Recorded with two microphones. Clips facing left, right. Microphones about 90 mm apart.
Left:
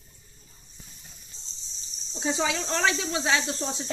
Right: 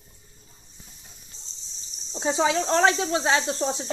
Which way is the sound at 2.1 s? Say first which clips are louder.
Right 5 dB; 30° right (ahead or behind).